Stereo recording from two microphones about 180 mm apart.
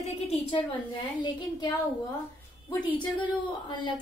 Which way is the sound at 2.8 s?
25° left (ahead or behind).